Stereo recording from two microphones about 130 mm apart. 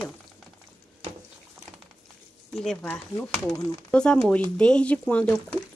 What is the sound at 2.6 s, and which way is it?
Speech, 5° left (ahead or behind).